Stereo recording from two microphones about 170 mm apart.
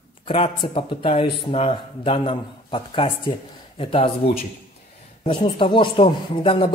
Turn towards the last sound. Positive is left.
turn(degrees=30)  # may be behind; listen again after turning